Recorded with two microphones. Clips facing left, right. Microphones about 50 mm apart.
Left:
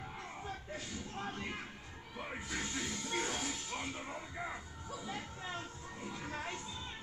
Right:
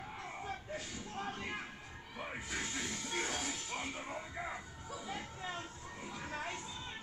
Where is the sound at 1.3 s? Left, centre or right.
Centre.